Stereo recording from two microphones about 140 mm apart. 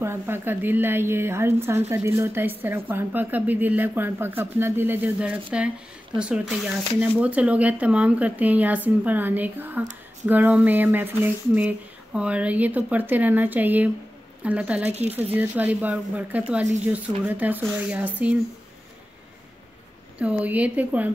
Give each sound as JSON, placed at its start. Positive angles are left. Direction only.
{"t": 0.0, "sound": "speech", "side_deg": -15}
{"t": 20.2, "sound": "speech", "side_deg": -10}